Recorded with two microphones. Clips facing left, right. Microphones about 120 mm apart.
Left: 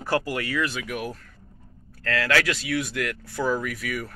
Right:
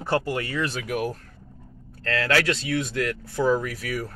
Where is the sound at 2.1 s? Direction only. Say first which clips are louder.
Right 1 dB; 30° right (ahead or behind).